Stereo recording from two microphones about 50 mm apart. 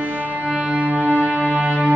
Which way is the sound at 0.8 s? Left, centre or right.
Right.